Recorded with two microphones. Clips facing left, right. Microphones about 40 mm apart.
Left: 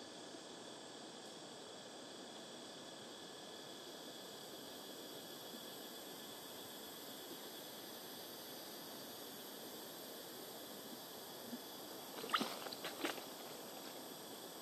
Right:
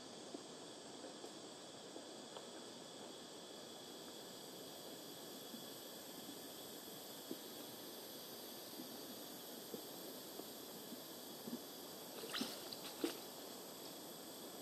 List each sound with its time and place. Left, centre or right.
12.3 s walk: left